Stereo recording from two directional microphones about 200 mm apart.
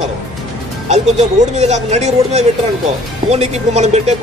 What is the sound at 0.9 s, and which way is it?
Speech, 35° right (ahead or behind).